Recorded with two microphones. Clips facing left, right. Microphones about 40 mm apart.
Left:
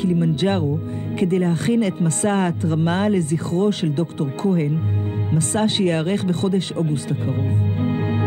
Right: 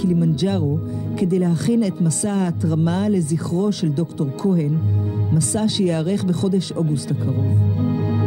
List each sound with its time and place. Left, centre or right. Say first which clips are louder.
0.0 s music: even; left
1.2 s speech: even; left